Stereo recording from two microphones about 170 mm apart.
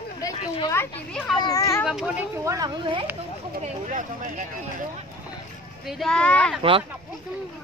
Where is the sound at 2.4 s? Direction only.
20° right (ahead or behind).